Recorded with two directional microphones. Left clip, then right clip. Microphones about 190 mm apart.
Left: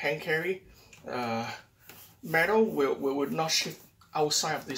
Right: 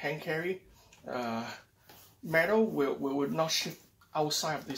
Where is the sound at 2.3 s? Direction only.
25° right (ahead or behind).